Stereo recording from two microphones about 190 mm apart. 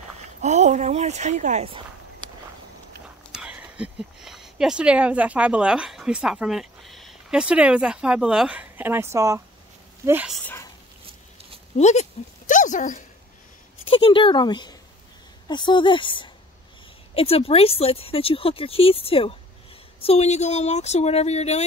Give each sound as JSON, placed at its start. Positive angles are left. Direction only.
{"t": 0.4, "sound": "speech", "side_deg": -40}
{"t": 3.3, "sound": "speech", "side_deg": -5}
{"t": 10.4, "sound": "speech", "side_deg": 10}
{"t": 11.7, "sound": "speech", "side_deg": 35}
{"t": 13.8, "sound": "a woman's voice", "side_deg": 25}